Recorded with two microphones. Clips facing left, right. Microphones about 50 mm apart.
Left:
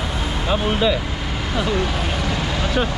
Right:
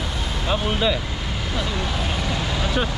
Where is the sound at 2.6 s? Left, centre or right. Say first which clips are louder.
Left 3 dB; centre.